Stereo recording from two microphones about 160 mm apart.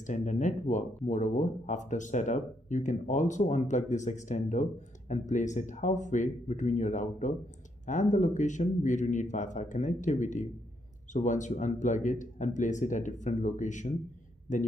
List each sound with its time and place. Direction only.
0.0 s speech: 50° left (ahead or behind)